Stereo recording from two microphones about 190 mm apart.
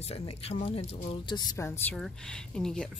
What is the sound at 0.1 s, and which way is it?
Speech, 30° left (ahead or behind).